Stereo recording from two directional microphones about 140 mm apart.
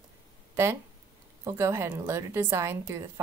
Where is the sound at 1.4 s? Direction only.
20° right (ahead or behind).